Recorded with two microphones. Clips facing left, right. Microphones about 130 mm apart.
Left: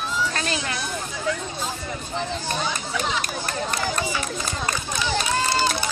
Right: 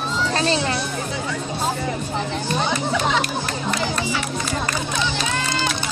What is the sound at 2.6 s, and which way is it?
Speech, 70° right (ahead or behind).